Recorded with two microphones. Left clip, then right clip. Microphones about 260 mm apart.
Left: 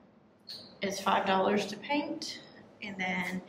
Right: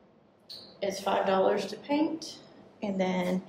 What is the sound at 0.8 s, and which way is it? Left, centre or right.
A woman's voice, centre.